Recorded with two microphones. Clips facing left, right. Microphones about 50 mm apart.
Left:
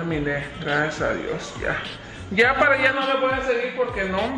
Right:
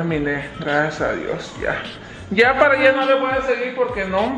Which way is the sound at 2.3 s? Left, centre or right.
Left.